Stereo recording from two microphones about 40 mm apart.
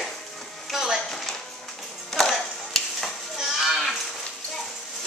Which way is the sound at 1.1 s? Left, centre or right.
Centre.